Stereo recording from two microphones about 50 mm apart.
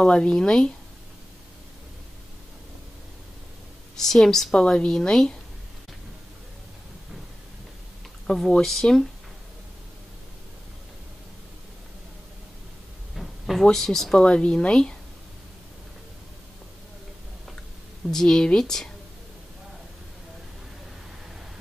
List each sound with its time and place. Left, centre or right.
0.0 s speech: centre
3.9 s speech: centre
8.4 s speech: centre
13.1 s a sound: centre
13.7 s speech: centre
14.2 s speech: centre
18.0 s speech: centre